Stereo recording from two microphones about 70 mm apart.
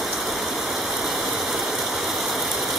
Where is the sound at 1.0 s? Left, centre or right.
Centre.